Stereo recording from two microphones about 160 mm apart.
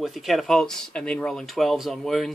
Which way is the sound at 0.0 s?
Centre (ahead or behind).